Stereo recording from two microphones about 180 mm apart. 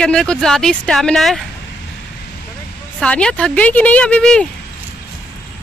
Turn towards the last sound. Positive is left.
turn(degrees=5)  # may be behind; listen again after turning